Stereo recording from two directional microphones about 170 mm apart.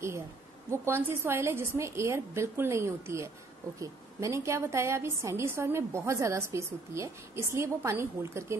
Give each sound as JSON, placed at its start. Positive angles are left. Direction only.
{"t": 0.7, "sound": "a woman's voice", "side_deg": -15}